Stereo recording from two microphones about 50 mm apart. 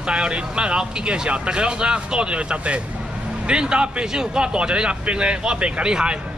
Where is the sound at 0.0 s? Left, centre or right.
Centre.